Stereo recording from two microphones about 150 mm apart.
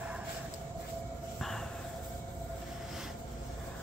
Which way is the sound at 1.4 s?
Centre (ahead or behind).